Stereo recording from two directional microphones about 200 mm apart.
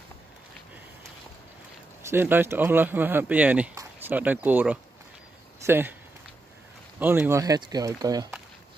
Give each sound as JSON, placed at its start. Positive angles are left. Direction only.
{"t": 2.0, "sound": "speech", "side_deg": -10}
{"t": 7.0, "sound": "speech", "side_deg": -10}